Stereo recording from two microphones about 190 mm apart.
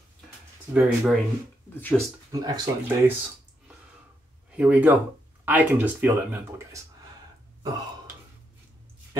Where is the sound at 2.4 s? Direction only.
20° right (ahead or behind).